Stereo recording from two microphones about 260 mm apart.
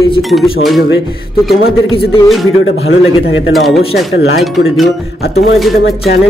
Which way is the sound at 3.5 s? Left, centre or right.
Centre.